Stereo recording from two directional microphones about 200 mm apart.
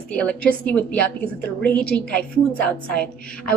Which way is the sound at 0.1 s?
5° left (ahead or behind).